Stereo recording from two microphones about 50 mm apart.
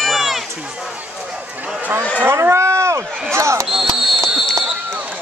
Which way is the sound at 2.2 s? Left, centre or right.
Right.